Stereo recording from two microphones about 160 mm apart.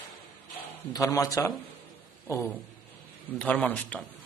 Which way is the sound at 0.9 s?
20° left (ahead or behind).